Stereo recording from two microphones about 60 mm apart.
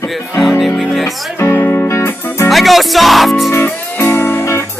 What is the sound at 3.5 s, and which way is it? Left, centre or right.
Music, left.